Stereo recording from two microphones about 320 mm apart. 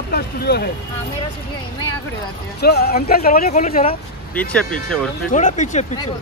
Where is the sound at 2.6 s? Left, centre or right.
Left.